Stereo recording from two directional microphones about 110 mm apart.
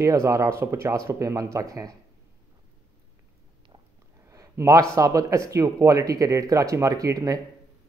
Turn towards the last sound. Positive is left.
turn(degrees=-30)  # may be behind; listen again after turning